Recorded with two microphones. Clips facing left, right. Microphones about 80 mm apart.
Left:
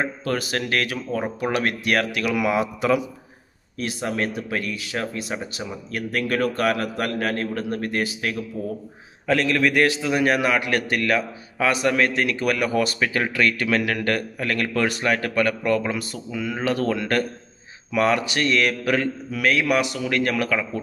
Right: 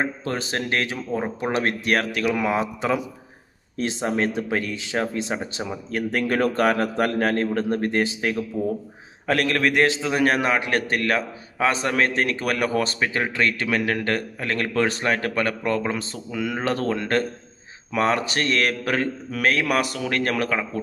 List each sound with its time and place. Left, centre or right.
0.0 s a man's voice: right
9.6 s a man's voice: right
16.3 s speech: right
16.5 s a man's voice: right